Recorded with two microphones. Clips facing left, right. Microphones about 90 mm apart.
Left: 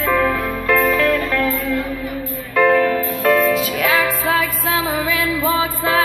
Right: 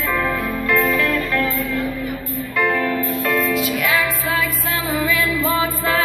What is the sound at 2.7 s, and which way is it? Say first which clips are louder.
Music: left 5 dB; 45° left (ahead or behind).